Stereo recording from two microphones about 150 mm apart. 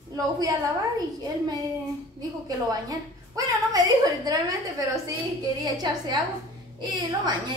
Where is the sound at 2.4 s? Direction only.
25° right (ahead or behind).